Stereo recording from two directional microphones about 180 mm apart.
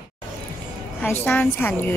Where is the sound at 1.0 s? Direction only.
10° left (ahead or behind).